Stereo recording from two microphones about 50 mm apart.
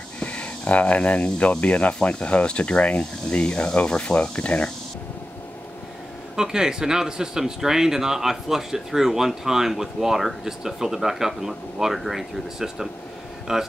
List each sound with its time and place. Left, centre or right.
0.2 s speech: left
6.3 s speech: centre